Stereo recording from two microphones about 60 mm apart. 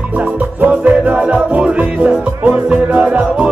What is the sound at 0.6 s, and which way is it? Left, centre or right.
Music, right.